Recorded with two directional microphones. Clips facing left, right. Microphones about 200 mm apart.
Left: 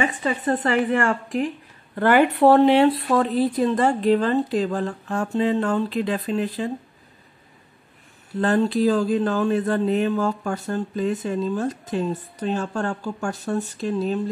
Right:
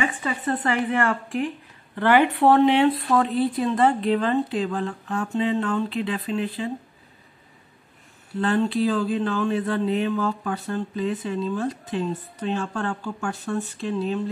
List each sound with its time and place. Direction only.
0.0 s speech: 40° left (ahead or behind)
8.4 s speech: 45° left (ahead or behind)